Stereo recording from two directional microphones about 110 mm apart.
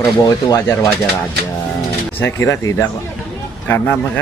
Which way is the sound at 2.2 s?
25° left (ahead or behind).